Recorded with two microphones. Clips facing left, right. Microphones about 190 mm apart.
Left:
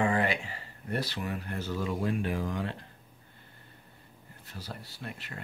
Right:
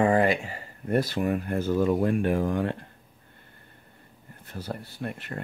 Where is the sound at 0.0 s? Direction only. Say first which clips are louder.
Right 6 dB; 45° right (ahead or behind).